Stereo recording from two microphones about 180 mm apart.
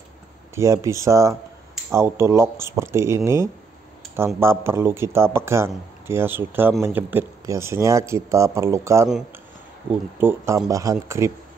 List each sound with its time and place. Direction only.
0.6 s speech: 15° right (ahead or behind)
4.4 s speech: 15° right (ahead or behind)
10.1 s speech: 15° right (ahead or behind)